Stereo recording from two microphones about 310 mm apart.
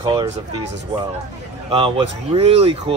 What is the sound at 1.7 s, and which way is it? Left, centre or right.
Speech, centre.